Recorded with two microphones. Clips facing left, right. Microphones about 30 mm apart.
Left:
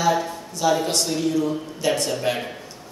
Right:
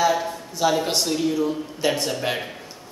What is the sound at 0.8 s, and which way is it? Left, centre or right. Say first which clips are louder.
Speech: even; centre.